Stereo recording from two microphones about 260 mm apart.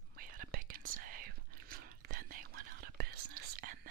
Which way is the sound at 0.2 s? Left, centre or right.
Right.